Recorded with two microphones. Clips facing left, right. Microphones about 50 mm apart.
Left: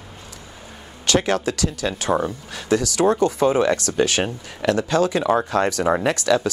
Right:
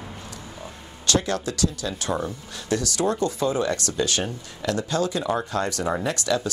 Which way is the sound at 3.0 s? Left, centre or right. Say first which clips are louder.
Left 6 dB; left.